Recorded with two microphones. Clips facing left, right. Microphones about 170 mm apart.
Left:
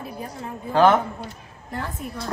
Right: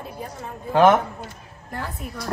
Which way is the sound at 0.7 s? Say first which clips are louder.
Right 1 dB; 15° right (ahead or behind).